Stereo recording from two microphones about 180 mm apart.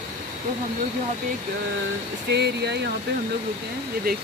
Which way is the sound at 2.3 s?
70° right (ahead or behind).